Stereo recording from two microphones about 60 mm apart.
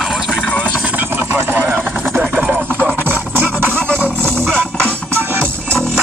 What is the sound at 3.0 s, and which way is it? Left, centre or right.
Music, right.